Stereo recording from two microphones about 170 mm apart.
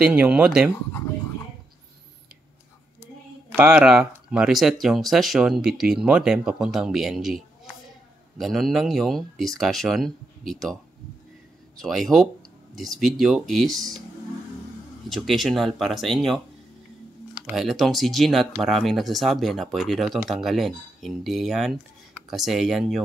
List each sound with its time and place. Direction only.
0.0 s speech: 5° right (ahead or behind)
3.5 s speech: 5° right (ahead or behind)
11.8 s speech: centre (ahead or behind)
15.0 s speech: centre (ahead or behind)
17.6 s speech: centre (ahead or behind)